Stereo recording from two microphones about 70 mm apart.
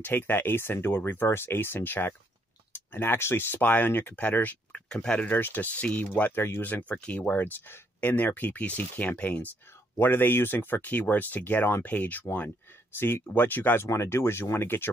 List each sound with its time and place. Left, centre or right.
0.0 s speech: left
4.8 s speech: centre
5.3 s speech: left
6.3 s speech: left
6.6 s speech: left